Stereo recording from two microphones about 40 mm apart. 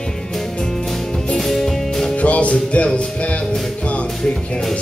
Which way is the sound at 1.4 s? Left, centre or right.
Centre.